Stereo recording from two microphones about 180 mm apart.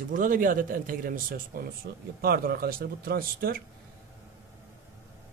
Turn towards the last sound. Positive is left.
turn(degrees=-55)  # may be behind; listen again after turning